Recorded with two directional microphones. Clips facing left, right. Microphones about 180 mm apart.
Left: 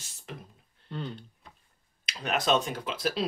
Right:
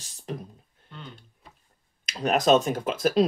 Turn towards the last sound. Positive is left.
turn(degrees=-45)  # may be behind; listen again after turning